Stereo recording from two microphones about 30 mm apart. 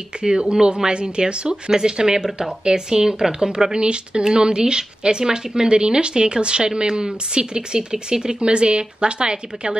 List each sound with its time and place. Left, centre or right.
0.2 s a woman's voice: right
8.4 s a woman's voice: right